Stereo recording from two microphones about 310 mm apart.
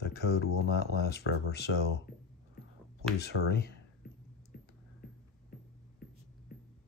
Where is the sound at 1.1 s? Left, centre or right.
Left.